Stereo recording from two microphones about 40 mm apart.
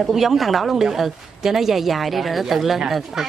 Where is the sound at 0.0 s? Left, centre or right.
Centre.